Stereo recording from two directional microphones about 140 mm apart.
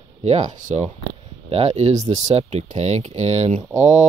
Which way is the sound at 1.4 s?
45° right (ahead or behind).